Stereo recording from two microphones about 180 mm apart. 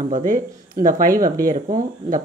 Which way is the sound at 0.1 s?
50° right (ahead or behind).